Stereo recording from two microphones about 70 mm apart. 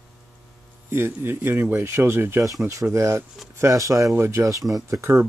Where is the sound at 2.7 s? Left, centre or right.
Right.